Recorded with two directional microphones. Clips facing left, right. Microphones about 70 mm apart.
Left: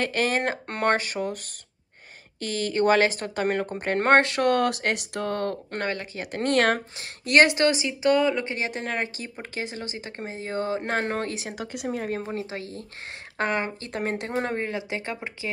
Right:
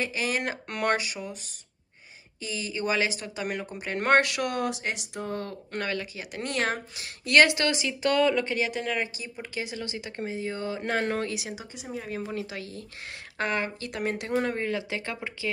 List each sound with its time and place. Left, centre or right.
0.0 s speech: left
2.4 s speech: left
5.8 s speech: left
7.0 s speech: left
8.5 s speech: left
11.6 s speech: left
12.3 s speech: left